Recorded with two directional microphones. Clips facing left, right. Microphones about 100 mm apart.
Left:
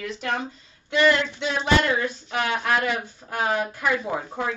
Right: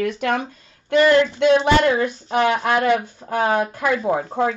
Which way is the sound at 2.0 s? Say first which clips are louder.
Right 8 dB; 50° right (ahead or behind).